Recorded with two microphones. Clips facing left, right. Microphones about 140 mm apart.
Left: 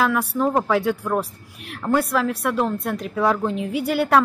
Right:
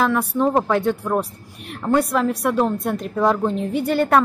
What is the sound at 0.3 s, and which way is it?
Speech, 10° right (ahead or behind).